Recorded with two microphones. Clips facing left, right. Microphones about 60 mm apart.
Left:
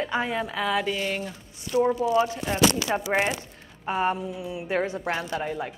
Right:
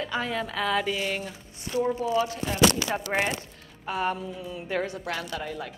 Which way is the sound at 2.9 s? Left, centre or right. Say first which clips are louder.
Left 3 dB; centre.